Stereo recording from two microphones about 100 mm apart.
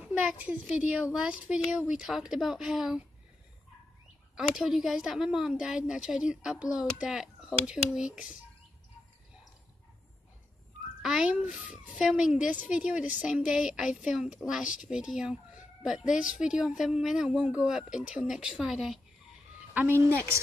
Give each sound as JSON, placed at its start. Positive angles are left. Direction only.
{"t": 0.0, "sound": "speech", "side_deg": -15}
{"t": 4.4, "sound": "speech", "side_deg": -5}
{"t": 11.0, "sound": "speech", "side_deg": -5}
{"t": 19.7, "sound": "a woman's voice", "side_deg": -15}